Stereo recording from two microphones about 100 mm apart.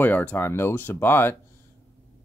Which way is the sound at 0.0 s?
15° left (ahead or behind).